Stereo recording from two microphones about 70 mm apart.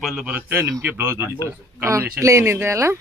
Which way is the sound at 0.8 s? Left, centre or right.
Right.